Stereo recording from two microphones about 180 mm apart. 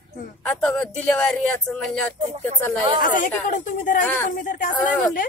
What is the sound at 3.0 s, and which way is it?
Speech, 50° left (ahead or behind).